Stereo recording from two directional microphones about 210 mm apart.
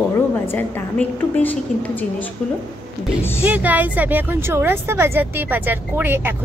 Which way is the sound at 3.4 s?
10° right (ahead or behind).